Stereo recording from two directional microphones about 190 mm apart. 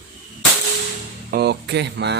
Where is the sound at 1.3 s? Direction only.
60° right (ahead or behind).